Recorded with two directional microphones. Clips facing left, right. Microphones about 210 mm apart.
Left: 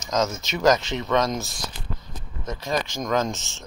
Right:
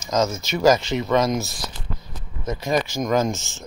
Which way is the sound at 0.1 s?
5° right (ahead or behind).